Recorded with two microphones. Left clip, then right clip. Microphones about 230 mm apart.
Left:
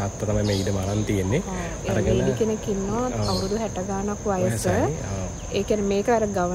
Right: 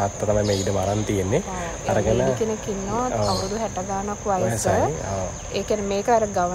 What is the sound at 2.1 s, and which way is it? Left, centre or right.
Speech, centre.